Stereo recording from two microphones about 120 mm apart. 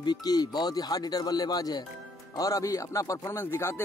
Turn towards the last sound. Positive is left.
turn(degrees=20)  # may be behind; listen again after turning